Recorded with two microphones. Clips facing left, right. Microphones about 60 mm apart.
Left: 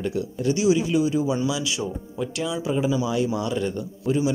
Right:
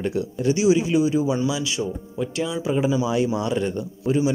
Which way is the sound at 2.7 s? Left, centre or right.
Centre.